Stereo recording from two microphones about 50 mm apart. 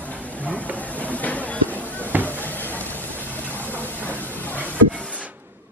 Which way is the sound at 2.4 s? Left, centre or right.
Left.